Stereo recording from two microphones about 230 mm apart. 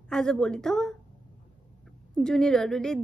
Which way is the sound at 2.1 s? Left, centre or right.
Centre.